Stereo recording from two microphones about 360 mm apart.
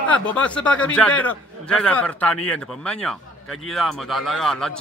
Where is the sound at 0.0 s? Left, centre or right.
Centre.